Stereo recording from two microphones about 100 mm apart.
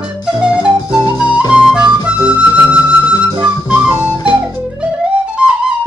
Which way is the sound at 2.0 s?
10° right (ahead or behind).